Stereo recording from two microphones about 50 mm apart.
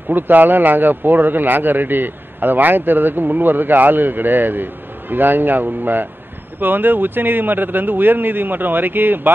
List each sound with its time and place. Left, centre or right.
0.1 s speech: right